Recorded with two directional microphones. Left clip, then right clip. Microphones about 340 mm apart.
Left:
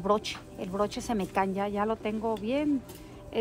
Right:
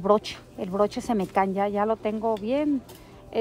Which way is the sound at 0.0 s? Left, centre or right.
Right.